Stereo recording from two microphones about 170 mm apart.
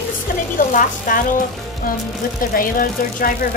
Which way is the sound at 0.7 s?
55° left (ahead or behind).